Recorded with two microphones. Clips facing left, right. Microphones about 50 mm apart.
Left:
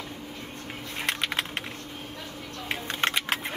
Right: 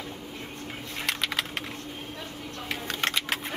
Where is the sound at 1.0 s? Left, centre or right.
Left.